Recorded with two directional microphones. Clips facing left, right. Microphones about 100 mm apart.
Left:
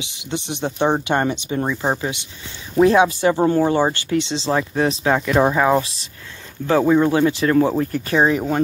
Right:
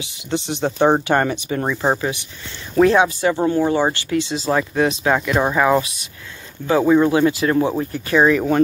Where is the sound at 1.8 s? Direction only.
30° right (ahead or behind).